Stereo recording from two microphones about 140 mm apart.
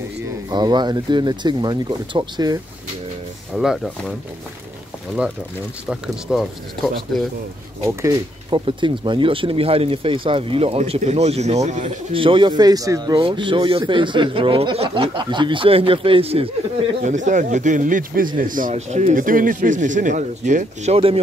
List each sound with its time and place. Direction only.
0.5 s speech: 30° right (ahead or behind)
3.5 s speech: centre (ahead or behind)
5.9 s speech: 5° right (ahead or behind)
7.8 s speech: 20° right (ahead or behind)
8.5 s speech: 35° right (ahead or behind); by 11.9 s 55° right (ahead or behind)
12.1 s speech: 40° right (ahead or behind)
17.0 s speech: 60° right (ahead or behind)
18.5 s speech: 65° right (ahead or behind); by 21.2 s 45° right (ahead or behind)